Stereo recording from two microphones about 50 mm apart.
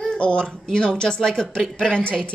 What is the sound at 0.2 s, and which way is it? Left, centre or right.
A woman's voice, left.